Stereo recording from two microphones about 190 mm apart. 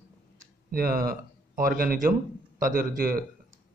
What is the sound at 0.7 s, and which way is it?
A man's voice, 50° right (ahead or behind).